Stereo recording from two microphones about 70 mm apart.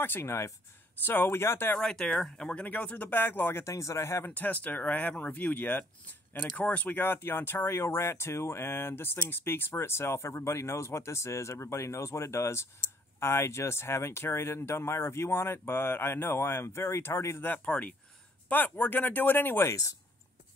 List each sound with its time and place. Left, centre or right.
0.0 s speech: left
1.8 s speech: centre; by 3.7 s left
3.7 s speech: left
4.3 s speech: left
17.5 s speech: left
19.7 s speech: left